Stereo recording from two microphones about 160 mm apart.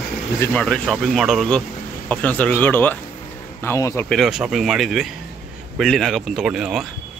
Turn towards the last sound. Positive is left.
turn(degrees=-5)  # may be behind; listen again after turning